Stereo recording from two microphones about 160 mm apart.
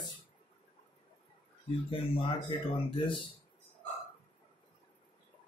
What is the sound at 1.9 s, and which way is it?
Speech, 35° left (ahead or behind).